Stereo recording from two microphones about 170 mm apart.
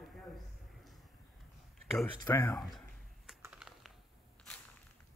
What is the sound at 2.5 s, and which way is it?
Speech, centre (ahead or behind).